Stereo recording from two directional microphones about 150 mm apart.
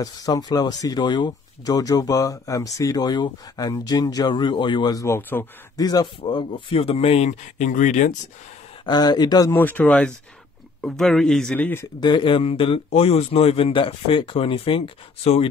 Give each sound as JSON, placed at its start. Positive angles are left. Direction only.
{"t": 0.0, "sound": "speech", "side_deg": 25}
{"t": 5.9, "sound": "speech", "side_deg": 30}
{"t": 8.8, "sound": "speech", "side_deg": 25}
{"t": 9.5, "sound": "a man's voice", "side_deg": 10}
{"t": 12.0, "sound": "a man's voice", "side_deg": 30}